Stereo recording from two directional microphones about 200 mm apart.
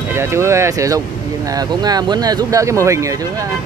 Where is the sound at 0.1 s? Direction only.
15° right (ahead or behind).